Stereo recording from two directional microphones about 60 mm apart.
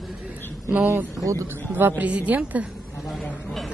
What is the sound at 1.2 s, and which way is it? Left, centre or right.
Speech, right.